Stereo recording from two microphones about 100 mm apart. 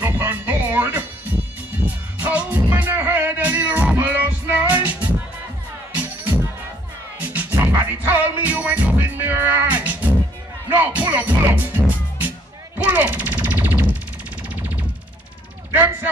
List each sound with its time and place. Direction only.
0.0 s music: 20° right (ahead or behind)
5.9 s music: 15° right (ahead or behind)
12.7 s a sound: 20° right (ahead or behind)